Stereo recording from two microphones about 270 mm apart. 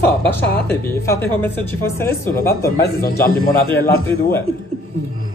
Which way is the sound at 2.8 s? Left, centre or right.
Left.